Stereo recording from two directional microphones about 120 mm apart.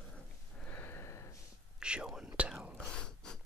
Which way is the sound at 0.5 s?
10° left (ahead or behind).